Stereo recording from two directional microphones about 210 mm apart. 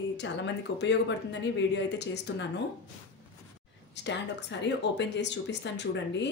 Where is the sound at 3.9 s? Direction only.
55° left (ahead or behind).